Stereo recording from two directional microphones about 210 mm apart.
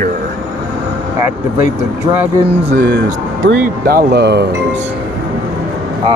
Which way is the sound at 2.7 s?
50° right (ahead or behind).